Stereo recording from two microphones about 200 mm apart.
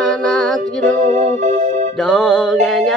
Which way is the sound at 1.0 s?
40° right (ahead or behind).